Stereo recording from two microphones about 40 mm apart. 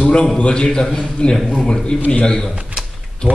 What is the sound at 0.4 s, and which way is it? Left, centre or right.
A man's voice, left.